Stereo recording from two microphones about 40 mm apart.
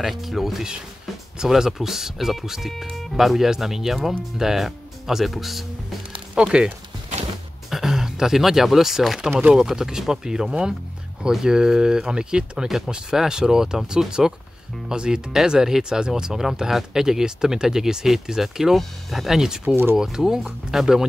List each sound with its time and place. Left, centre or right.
0.0 s speech: centre
6.3 s speech: right
7.7 s speech: centre
12.6 s speech: centre
19.7 s speech: right
20.0 s speech: centre